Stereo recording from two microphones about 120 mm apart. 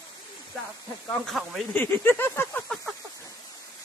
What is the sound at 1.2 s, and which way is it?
Speech, centre (ahead or behind).